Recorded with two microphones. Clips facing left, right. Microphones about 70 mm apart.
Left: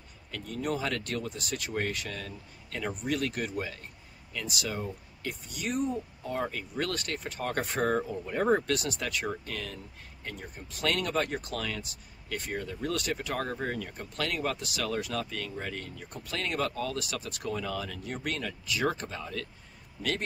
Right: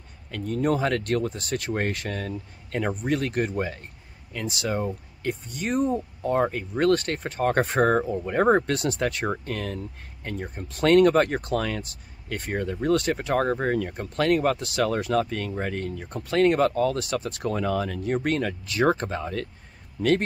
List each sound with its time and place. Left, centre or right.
0.3 s speech: right